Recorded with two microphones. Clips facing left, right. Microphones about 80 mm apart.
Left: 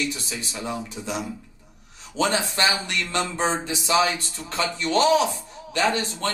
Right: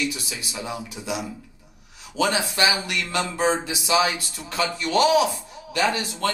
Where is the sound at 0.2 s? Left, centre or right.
Left.